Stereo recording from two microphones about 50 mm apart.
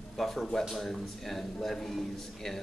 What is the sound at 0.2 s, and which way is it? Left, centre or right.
Speech, centre.